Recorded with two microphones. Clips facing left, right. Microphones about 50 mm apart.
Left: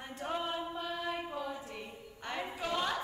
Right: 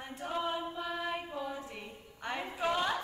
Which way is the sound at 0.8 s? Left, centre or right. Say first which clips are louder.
Right 1 dB; centre.